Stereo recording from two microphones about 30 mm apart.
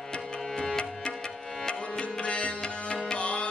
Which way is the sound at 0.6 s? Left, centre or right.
Left.